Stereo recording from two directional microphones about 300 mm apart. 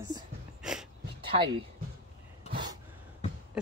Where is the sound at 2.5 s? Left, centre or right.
Centre.